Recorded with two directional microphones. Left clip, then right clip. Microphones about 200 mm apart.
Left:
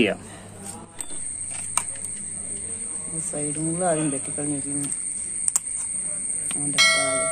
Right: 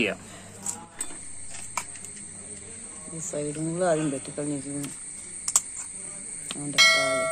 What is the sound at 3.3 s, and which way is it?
Speech, 40° right (ahead or behind).